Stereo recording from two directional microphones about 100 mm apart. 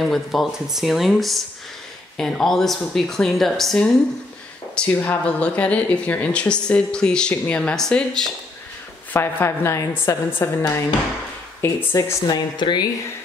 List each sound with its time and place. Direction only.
0.0 s speech: centre (ahead or behind)
4.7 s speech: 15° left (ahead or behind)
9.1 s a woman's voice: 25° left (ahead or behind)
11.8 s a woman's voice: 25° left (ahead or behind)
12.3 s speech: 45° left (ahead or behind)